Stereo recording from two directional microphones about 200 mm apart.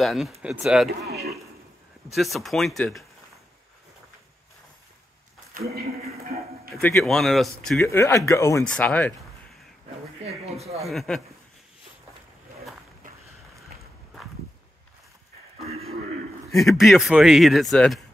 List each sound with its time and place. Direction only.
0.0 s a man's voice: centre (ahead or behind)
1.0 s a sound: 55° right (ahead or behind)
2.1 s a man's voice: centre (ahead or behind)
7.0 s a man's voice: centre (ahead or behind)
7.8 s speech: 15° left (ahead or behind)
10.2 s speech: 30° right (ahead or behind)
10.9 s a man's voice: centre (ahead or behind)
15.6 s a sound: 30° right (ahead or behind)
16.5 s a man's voice: centre (ahead or behind)